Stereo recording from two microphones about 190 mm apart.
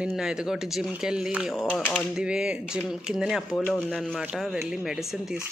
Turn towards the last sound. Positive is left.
turn(degrees=0)  # may be behind; listen again after turning